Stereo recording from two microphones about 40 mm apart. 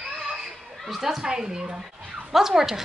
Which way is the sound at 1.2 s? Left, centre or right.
Centre.